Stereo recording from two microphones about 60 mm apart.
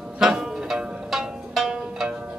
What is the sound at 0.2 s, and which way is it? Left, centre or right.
Music, centre.